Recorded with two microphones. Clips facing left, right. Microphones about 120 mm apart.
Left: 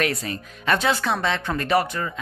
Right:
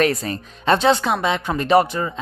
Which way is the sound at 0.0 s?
35° right (ahead or behind).